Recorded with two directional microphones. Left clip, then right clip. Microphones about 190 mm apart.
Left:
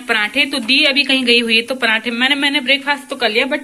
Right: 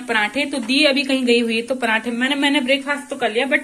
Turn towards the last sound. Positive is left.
turn(degrees=15)  # may be behind; listen again after turning